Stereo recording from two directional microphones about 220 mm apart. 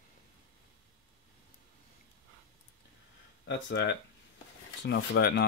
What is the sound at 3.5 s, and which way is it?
Speech, 50° left (ahead or behind).